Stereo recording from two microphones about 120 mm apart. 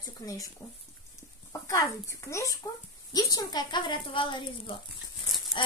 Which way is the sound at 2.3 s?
25° left (ahead or behind).